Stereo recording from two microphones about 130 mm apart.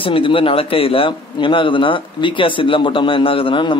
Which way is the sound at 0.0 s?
45° left (ahead or behind).